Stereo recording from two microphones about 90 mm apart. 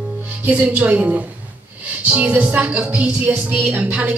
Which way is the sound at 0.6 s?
15° right (ahead or behind).